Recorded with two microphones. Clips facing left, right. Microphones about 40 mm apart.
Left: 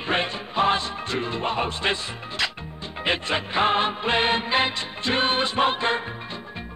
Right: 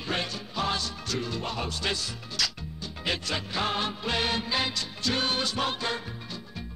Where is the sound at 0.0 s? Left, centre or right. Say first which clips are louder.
Left 6 dB; left.